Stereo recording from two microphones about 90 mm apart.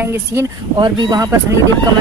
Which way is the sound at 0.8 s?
55° right (ahead or behind).